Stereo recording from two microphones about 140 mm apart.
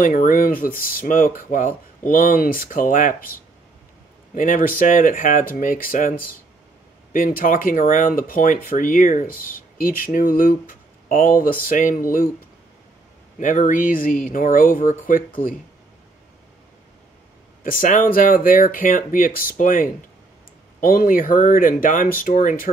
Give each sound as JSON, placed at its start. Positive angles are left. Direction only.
{"t": 0.0, "sound": "speech", "side_deg": 75}
{"t": 2.0, "sound": "speech", "side_deg": 85}
{"t": 4.4, "sound": "speech", "side_deg": 75}
{"t": 9.4, "sound": "speech", "side_deg": 90}
{"t": 13.4, "sound": "speech", "side_deg": 70}
{"t": 17.6, "sound": "speech", "side_deg": 80}
{"t": 20.8, "sound": "speech", "side_deg": 90}